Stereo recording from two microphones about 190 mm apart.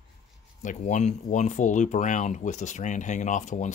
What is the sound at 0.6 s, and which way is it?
Speech, 40° left (ahead or behind).